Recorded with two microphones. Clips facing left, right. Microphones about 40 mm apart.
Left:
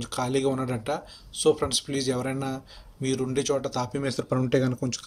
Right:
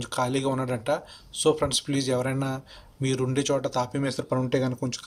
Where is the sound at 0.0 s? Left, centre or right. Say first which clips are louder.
Even; right.